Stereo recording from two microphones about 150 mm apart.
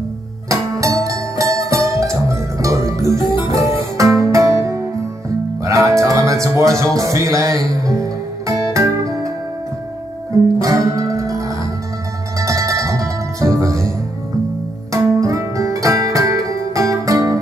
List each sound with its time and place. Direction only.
0.5 s music: 20° right (ahead or behind)
10.6 s music: 20° right (ahead or behind)